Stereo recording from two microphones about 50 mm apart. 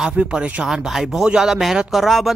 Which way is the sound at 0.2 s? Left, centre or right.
Right.